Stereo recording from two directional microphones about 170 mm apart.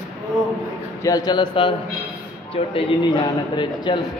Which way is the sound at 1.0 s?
20° left (ahead or behind).